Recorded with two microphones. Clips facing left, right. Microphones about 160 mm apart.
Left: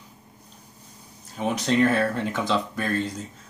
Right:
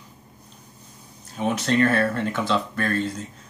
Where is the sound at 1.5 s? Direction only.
10° left (ahead or behind).